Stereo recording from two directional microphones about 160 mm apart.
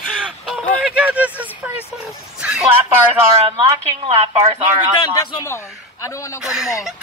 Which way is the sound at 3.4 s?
35° right (ahead or behind).